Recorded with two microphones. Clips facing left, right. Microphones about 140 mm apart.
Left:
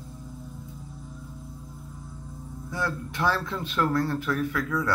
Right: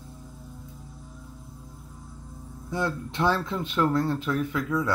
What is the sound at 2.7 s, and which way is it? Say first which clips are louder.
Speech: right 2 dB; 20° right (ahead or behind).